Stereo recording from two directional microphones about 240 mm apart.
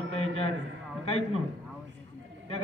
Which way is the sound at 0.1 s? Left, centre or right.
Left.